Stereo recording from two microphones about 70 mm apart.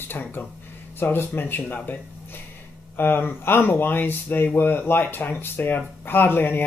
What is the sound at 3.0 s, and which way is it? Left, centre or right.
Speech, left.